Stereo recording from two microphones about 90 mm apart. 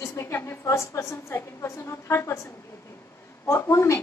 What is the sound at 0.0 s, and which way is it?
A woman's voice, 30° left (ahead or behind).